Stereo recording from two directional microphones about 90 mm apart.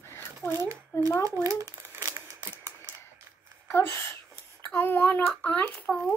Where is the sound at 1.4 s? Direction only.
35° right (ahead or behind).